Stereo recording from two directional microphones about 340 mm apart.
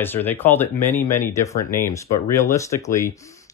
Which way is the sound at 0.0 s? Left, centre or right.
Centre.